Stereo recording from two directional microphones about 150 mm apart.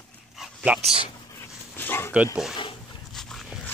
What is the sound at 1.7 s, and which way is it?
Dog, 15° left (ahead or behind).